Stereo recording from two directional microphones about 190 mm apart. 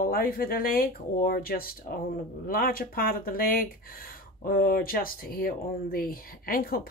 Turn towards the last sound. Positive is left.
turn(degrees=50)  # may be behind; listen again after turning